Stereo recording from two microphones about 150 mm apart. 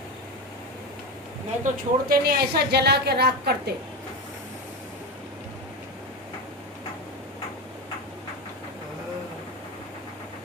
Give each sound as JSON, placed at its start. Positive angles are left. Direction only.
{"t": 1.6, "sound": "a woman's voice", "side_deg": -85}